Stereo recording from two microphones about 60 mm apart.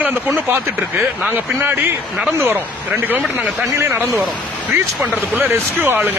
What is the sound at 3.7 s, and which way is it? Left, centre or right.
Speech, right.